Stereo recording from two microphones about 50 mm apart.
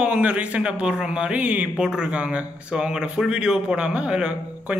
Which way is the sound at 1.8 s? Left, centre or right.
Centre.